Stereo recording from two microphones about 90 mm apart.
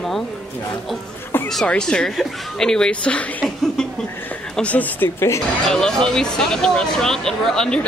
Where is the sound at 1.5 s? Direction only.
5° left (ahead or behind); by 5.4 s 25° left (ahead or behind).